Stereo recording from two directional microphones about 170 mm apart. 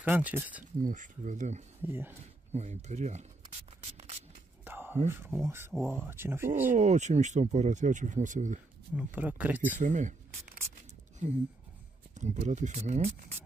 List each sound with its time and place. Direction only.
0.0 s speech: 10° right (ahead or behind)
0.7 s speech: 50° right (ahead or behind)
1.8 s speech: 15° right (ahead or behind)
2.5 s speech: 40° right (ahead or behind)
4.6 s whispering: 10° right (ahead or behind)
5.9 s speech: 15° right (ahead or behind)
6.7 s speech: 45° right (ahead or behind)
8.9 s speech: 10° right (ahead or behind)
9.8 s speech: 45° right (ahead or behind)
12.2 s speech: 45° right (ahead or behind)